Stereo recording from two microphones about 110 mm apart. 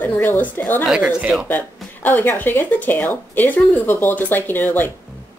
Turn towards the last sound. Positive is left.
turn(degrees=15)  # may be behind; listen again after turning